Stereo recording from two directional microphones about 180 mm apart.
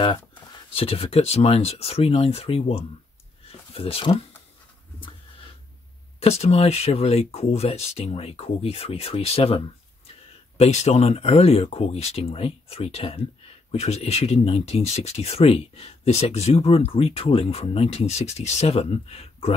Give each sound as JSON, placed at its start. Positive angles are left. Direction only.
{"t": 0.7, "sound": "speech", "side_deg": 30}
{"t": 6.1, "sound": "speech", "side_deg": 35}
{"t": 10.6, "sound": "speech", "side_deg": 35}